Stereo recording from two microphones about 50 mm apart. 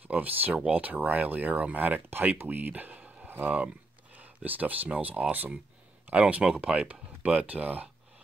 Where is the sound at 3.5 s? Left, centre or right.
Right.